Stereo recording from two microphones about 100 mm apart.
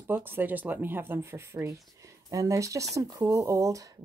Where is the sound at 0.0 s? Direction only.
20° right (ahead or behind).